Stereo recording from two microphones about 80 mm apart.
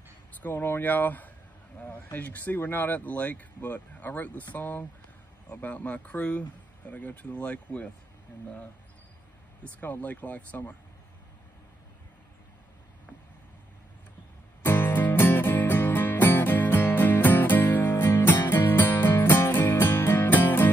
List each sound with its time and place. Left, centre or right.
0.4 s speech: left
9.8 s speech: left
14.6 s music: left